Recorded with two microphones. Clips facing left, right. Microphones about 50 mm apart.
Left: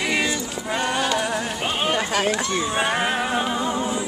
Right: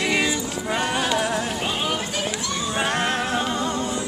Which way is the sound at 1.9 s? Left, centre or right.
Left.